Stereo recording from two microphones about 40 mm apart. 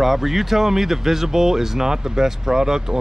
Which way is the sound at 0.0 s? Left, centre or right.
Centre.